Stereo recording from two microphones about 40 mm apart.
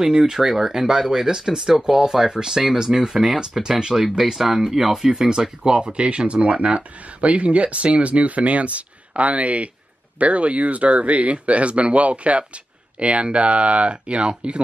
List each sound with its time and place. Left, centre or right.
0.0 s speech: centre
5.6 s speech: right